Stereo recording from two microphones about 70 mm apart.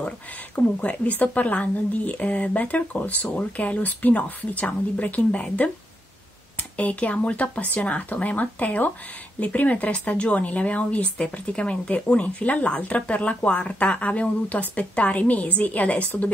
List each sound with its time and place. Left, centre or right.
0.7 s speech: left
6.8 s speech: left